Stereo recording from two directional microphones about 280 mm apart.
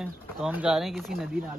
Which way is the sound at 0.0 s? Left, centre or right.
Centre.